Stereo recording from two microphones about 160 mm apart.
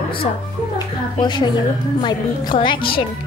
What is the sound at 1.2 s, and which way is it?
A woman's voice, 25° left (ahead or behind).